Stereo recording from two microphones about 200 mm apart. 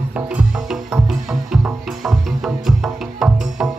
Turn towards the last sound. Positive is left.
turn(degrees=-5)  # may be behind; listen again after turning